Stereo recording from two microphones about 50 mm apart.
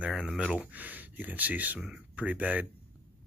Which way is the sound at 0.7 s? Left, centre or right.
Right.